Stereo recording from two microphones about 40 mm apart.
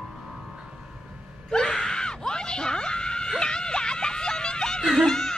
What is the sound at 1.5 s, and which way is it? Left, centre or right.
Screaming, centre.